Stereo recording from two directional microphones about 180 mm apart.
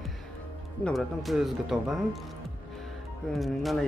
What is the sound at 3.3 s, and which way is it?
Speech, centre (ahead or behind).